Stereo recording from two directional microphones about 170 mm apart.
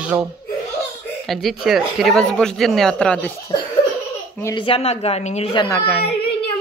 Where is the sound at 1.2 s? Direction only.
Centre (ahead or behind).